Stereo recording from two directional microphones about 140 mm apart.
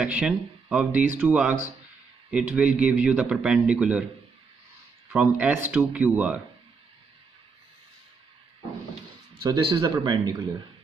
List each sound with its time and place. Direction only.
0.0 s speech: 10° right (ahead or behind)
5.1 s speech: 10° right (ahead or behind)
9.4 s a man's voice: 35° right (ahead or behind)